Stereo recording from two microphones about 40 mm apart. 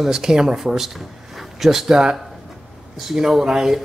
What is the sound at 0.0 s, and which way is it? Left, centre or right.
Speech, centre.